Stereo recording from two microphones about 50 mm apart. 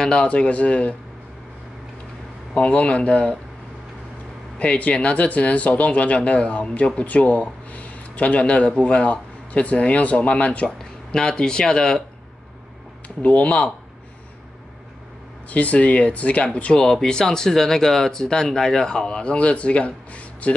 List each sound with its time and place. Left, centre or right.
0.0 s speech: centre
2.5 s speech: left
4.6 s speech: left
10.8 s speech: centre
13.2 s speech: left
15.5 s speech: left
16.8 s speech: centre; by 20.5 s left